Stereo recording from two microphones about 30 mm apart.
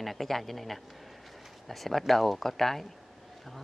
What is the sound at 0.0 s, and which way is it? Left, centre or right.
Speech, centre.